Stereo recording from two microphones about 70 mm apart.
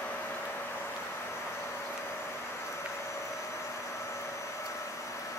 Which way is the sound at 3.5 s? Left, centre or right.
Left.